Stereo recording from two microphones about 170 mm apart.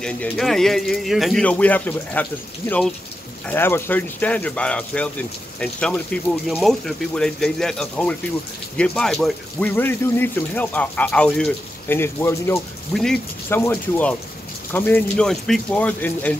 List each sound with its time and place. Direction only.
0.0 s a man's voice: 5° left (ahead or behind)
3.4 s speech: 15° left (ahead or behind)
12.9 s a man's voice: 5° left (ahead or behind)